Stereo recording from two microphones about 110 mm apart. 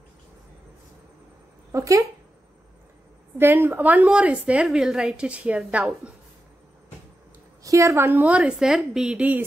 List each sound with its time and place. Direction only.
1.7 s speech: 30° right (ahead or behind)
3.3 s a woman's voice: 20° right (ahead or behind)
7.6 s a woman's voice: 30° right (ahead or behind); by 9.4 s 10° right (ahead or behind)